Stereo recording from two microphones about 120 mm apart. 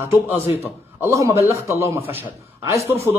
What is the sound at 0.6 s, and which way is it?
A man's voice, 20° right (ahead or behind).